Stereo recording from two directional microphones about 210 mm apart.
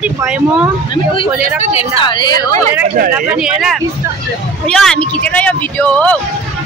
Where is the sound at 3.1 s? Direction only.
5° right (ahead or behind).